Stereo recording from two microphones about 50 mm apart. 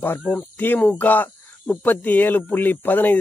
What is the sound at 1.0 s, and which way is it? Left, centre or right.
A man's voice, left.